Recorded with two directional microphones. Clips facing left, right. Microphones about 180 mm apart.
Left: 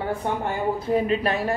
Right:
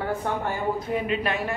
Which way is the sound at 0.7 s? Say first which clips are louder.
Left 4 dB; 35° left (ahead or behind).